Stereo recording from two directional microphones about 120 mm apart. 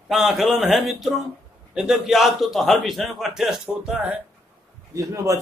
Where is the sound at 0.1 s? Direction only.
Centre (ahead or behind).